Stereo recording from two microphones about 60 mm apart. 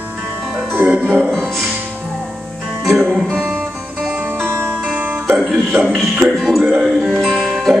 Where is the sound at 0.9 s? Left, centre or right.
Right.